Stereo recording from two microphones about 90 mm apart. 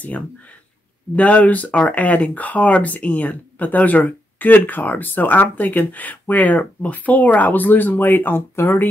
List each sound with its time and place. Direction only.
1.1 s speech: 15° left (ahead or behind)